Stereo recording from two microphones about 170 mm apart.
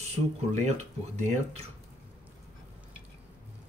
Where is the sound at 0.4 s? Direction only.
40° right (ahead or behind).